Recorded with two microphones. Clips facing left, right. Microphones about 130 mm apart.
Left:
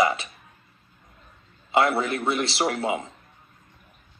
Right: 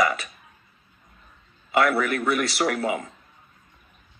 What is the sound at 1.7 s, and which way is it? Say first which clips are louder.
A woman's voice: even; 25° left (ahead or behind).